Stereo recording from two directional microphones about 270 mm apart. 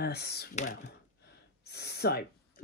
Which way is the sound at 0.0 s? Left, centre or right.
Left.